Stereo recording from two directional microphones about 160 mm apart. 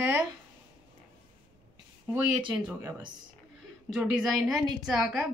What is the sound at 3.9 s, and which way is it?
A woman's voice, 5° right (ahead or behind).